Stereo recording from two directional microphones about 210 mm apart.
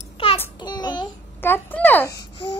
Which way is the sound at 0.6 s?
20° left (ahead or behind).